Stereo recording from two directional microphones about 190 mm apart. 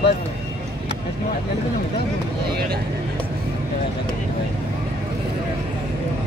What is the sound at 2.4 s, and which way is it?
Speech, 55° right (ahead or behind).